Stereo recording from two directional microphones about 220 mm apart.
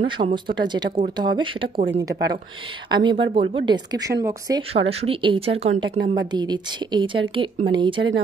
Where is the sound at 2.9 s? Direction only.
20° right (ahead or behind).